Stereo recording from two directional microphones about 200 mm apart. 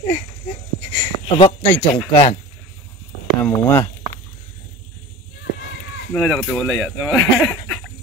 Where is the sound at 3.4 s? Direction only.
10° left (ahead or behind).